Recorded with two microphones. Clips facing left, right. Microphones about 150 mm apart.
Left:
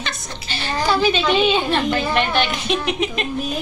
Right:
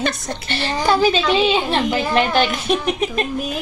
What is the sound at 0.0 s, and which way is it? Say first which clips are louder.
Speech: right 8 dB; 65° right (ahead or behind).